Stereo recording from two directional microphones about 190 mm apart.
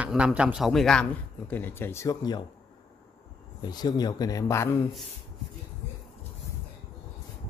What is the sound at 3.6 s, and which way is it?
A man's voice, 20° left (ahead or behind).